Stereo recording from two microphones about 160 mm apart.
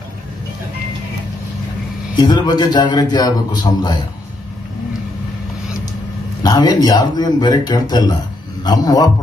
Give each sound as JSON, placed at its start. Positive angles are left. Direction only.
{"t": 2.1, "sound": "speech", "side_deg": 25}
{"t": 6.4, "sound": "speech", "side_deg": 25}